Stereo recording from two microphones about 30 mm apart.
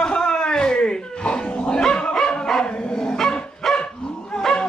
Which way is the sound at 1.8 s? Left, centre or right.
Left.